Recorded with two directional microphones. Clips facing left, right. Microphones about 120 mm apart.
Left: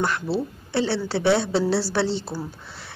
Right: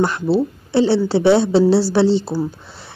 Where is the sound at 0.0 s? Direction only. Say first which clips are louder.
Right 7 dB; 25° right (ahead or behind).